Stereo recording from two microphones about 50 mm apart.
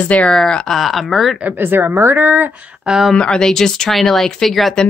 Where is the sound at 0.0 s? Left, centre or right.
Left.